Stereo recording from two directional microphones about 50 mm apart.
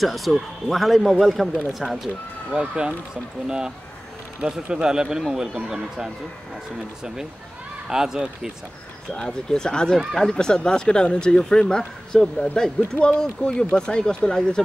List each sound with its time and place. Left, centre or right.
0.0 s speech: centre
2.5 s a man's voice: centre
7.9 s a man's voice: centre
9.1 s speech: centre
12.9 s speech: left